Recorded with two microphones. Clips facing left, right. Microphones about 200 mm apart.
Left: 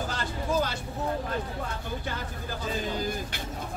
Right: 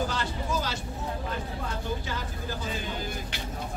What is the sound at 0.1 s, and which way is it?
Vehicle, 55° left (ahead or behind).